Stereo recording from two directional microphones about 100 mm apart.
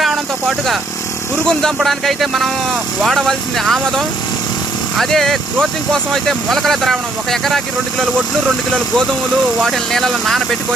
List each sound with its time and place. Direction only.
0.0 s a sound: centre (ahead or behind)
1.8 s speech: centre (ahead or behind)
9.6 s speech: centre (ahead or behind)